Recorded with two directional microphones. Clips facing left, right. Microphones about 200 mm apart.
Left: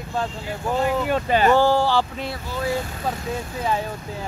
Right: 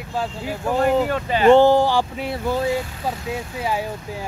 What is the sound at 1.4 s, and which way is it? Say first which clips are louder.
Speech: right 7 dB; 20° right (ahead or behind).